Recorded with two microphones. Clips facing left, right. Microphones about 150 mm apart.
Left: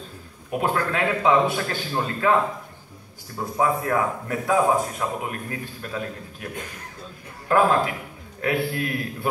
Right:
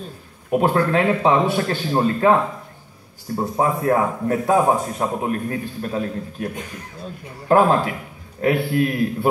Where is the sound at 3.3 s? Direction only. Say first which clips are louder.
Right 2 dB; 35° right (ahead or behind).